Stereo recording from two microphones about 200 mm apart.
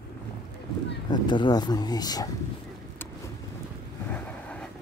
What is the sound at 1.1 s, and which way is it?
Speech, 20° left (ahead or behind).